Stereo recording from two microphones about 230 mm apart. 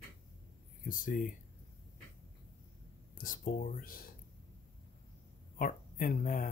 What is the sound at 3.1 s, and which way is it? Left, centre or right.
Speech, left.